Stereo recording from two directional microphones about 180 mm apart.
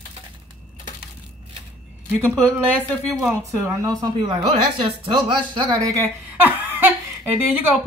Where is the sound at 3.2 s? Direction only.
15° right (ahead or behind).